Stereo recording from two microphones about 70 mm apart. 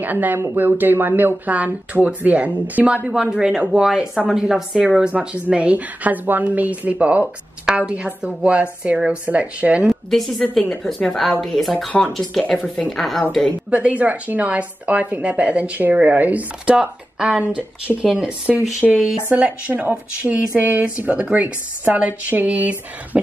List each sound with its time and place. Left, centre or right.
0.0 s speech: right
10.1 s speech: centre
13.7 s speech: centre
19.3 s speech: right